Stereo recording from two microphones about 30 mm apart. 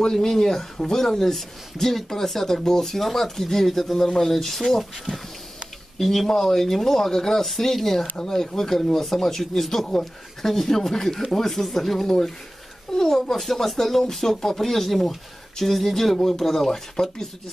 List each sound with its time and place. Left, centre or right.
0.1 s speech: centre
8.2 s speech: centre